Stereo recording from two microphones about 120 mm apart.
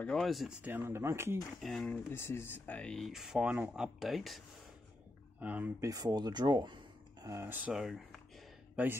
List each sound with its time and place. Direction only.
0.0 s speech: 5° left (ahead or behind)
0.6 s speech: 15° right (ahead or behind)
1.6 s speech: 5° left (ahead or behind)
1.9 s speech: 20° left (ahead or behind); by 4.4 s centre (ahead or behind)
5.4 s speech: 15° right (ahead or behind)
5.8 s speech: 30° right (ahead or behind)
7.7 s speech: centre (ahead or behind)